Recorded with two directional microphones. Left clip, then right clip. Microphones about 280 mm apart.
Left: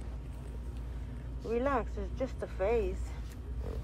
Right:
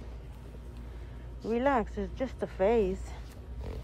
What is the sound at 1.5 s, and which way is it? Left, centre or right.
Speech, right.